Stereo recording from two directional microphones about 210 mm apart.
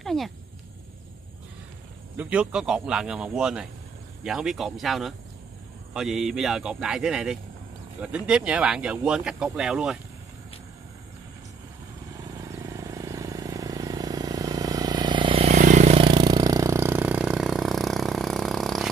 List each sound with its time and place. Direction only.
0.0 s a sound: centre (ahead or behind)
2.1 s speech: 5° right (ahead or behind)
12.1 s vehicle: 15° right (ahead or behind); by 18.9 s centre (ahead or behind)